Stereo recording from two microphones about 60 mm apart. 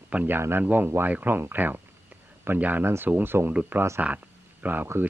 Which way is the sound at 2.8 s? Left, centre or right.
Right.